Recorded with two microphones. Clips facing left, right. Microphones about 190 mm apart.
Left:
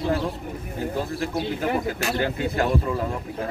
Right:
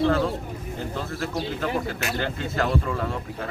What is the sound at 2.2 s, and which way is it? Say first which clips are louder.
Speech: left 3 dB; 15° left (ahead or behind).